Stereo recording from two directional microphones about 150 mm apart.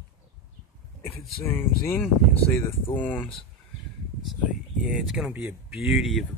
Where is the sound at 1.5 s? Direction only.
15° left (ahead or behind).